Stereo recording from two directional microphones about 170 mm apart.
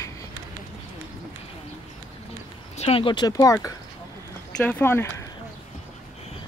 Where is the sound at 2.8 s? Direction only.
35° left (ahead or behind); by 5.0 s 10° left (ahead or behind).